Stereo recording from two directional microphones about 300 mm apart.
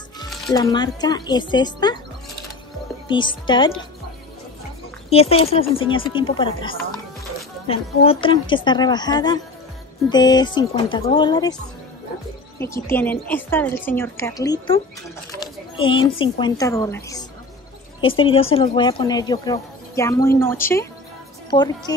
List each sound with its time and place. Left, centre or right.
0.5 s speech: centre
3.1 s speech: centre
5.1 s speech: centre
12.5 s speech: centre
15.4 s a sound: centre
16.3 s speech: centre